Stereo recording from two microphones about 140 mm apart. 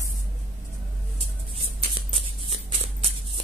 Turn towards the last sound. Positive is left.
turn(degrees=-40)  # may be behind; listen again after turning